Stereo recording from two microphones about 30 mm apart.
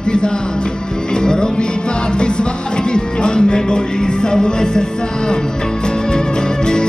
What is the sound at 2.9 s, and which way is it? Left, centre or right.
Music, left.